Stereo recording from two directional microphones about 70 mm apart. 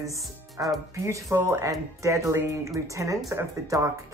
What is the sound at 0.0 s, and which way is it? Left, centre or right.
Speech, right.